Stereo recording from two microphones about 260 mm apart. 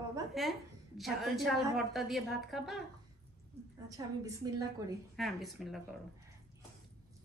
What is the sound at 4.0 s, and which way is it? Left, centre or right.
Speech, centre.